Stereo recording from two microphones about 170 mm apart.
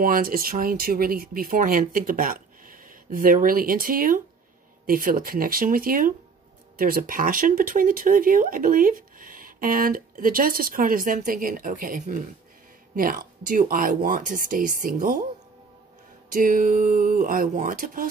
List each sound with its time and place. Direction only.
0.0 s speech: 60° right (ahead or behind)
16.3 s speech: 55° right (ahead or behind)